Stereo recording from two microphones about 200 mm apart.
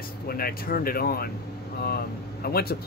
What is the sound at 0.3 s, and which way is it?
Speech, 50° left (ahead or behind).